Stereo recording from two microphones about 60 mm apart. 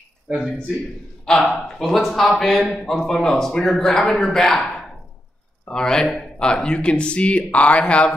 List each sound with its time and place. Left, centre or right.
1.3 s a man's voice: centre